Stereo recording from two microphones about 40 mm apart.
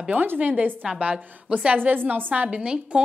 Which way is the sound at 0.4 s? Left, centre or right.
Right.